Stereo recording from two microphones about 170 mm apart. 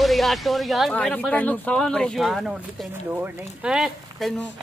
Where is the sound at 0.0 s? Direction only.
Centre (ahead or behind).